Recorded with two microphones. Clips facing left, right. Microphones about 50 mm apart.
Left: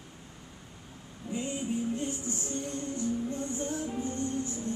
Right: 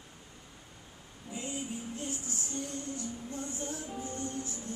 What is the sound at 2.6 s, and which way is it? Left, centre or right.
Music, left.